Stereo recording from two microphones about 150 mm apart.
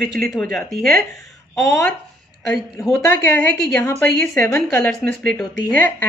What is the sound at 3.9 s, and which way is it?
A woman's voice, 5° left (ahead or behind).